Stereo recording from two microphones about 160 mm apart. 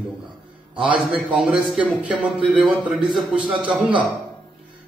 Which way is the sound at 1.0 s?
5° right (ahead or behind).